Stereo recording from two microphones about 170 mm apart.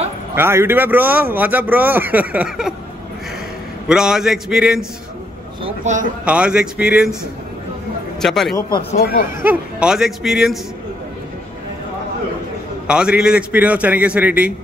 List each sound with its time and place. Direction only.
0.4 s speech: 15° right (ahead or behind)
3.9 s speech: 5° right (ahead or behind)
5.9 s speech: 45° right (ahead or behind)
6.2 s speech: 5° right (ahead or behind)
8.2 s a man's voice: centre (ahead or behind)
8.9 s speech: 65° left (ahead or behind)
9.4 s speech: 10° right (ahead or behind)
12.8 s speech: 5° right (ahead or behind)